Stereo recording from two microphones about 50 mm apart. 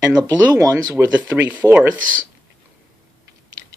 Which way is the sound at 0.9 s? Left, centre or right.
Right.